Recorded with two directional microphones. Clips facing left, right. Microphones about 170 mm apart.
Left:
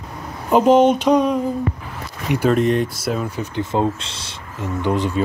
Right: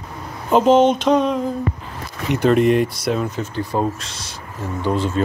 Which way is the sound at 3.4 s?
20° left (ahead or behind).